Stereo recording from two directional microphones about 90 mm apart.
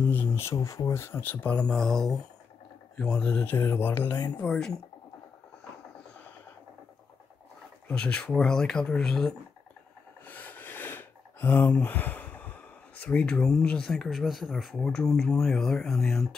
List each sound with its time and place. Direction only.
0.1 s speech: 25° left (ahead or behind)
3.4 s speech: 25° left (ahead or behind)
4.4 s speech: 5° left (ahead or behind)
7.9 s speech: 15° left (ahead or behind)
10.2 s speech: 20° left (ahead or behind); by 16.2 s centre (ahead or behind)